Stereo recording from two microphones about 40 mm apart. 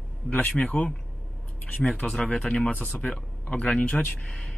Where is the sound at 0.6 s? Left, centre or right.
Left.